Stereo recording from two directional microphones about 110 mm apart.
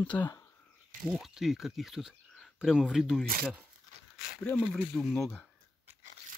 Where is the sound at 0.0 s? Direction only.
10° left (ahead or behind).